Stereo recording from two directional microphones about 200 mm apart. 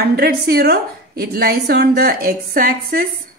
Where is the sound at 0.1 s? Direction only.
50° right (ahead or behind).